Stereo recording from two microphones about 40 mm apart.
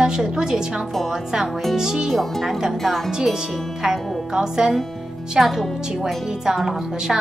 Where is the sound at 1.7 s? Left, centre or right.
Centre.